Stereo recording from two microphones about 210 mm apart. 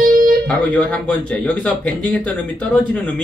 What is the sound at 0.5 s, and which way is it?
Speech, 5° left (ahead or behind).